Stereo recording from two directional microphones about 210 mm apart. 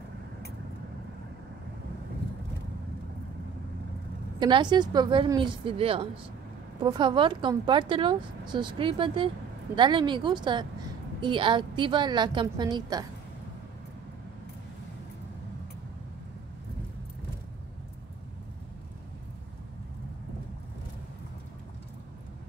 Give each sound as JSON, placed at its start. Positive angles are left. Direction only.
{"t": 4.4, "sound": "speech", "side_deg": -20}